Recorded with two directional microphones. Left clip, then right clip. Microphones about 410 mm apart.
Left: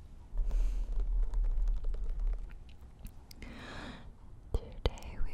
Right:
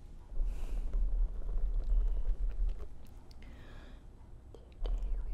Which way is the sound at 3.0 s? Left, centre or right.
Left.